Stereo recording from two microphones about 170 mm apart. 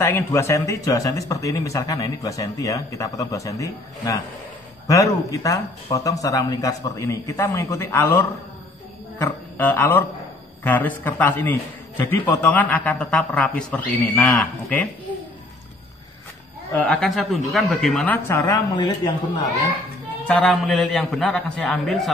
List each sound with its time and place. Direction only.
0.0 s a man's voice: 15° left (ahead or behind)
16.7 s a man's voice: 5° left (ahead or behind)
20.2 s a man's voice: 5° left (ahead or behind)